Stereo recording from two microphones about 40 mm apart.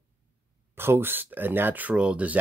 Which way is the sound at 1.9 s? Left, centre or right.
Right.